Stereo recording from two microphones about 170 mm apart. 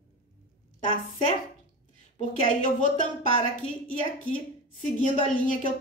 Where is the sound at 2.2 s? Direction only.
50° left (ahead or behind).